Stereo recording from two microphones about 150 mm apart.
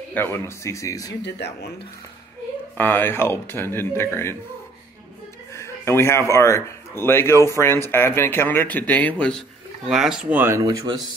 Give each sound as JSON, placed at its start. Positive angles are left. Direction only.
{"t": 0.1, "sound": "speech", "side_deg": 15}
{"t": 2.8, "sound": "speech", "side_deg": 15}
{"t": 5.5, "sound": "music", "side_deg": 20}
{"t": 6.3, "sound": "speech", "side_deg": 20}
{"t": 9.8, "sound": "speech", "side_deg": 0}